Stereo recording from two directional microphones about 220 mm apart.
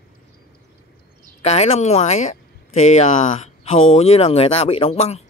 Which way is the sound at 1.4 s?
30° left (ahead or behind).